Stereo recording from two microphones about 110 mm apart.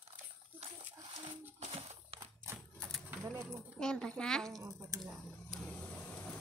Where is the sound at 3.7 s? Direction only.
5° left (ahead or behind).